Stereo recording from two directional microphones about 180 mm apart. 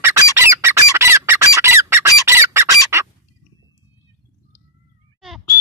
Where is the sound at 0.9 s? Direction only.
15° right (ahead or behind).